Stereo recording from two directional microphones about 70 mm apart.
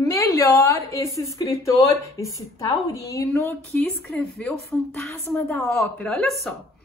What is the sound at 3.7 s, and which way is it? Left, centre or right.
Speech, left.